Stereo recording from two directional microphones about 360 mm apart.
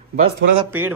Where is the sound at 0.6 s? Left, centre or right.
Centre.